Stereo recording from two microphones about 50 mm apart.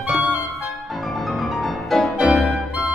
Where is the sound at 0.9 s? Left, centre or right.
Centre.